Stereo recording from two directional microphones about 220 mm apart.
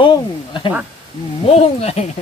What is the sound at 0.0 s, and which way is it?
Speech, 20° left (ahead or behind).